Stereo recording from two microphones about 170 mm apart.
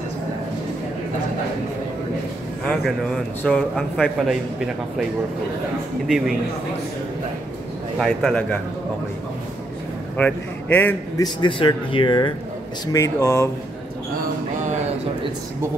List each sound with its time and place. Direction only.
3.4 s a man's voice: centre (ahead or behind)
6.0 s a man's voice: centre (ahead or behind)
8.0 s a man's voice: 5° left (ahead or behind)
10.1 s a man's voice: 10° left (ahead or behind)
11.1 s speech: 30° left (ahead or behind)
14.6 s a sound: 45° right (ahead or behind)